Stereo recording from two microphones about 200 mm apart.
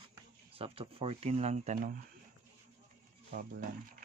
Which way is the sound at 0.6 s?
30° right (ahead or behind).